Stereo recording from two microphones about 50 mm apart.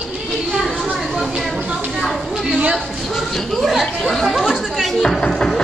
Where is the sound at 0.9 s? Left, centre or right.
Centre.